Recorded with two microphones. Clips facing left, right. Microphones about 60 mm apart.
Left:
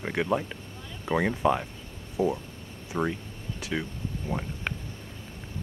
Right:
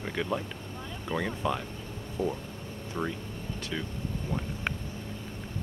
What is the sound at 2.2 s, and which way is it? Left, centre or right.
Speech, centre.